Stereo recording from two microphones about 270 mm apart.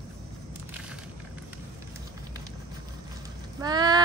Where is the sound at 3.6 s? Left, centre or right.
Centre.